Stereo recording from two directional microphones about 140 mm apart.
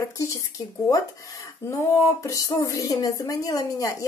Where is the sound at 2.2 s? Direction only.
20° left (ahead or behind).